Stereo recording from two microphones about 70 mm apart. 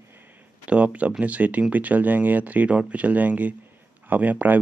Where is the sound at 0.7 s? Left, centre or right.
Centre.